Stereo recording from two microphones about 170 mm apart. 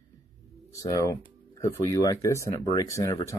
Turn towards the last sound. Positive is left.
turn(degrees=20)  # may be behind; listen again after turning